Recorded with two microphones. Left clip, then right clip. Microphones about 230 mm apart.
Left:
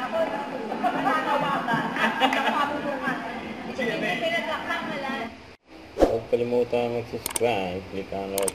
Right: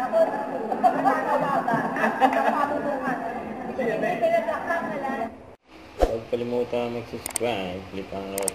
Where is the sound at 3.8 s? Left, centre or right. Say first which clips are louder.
Right 3 dB; centre.